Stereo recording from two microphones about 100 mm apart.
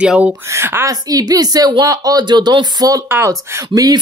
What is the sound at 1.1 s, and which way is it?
Speech, 40° right (ahead or behind).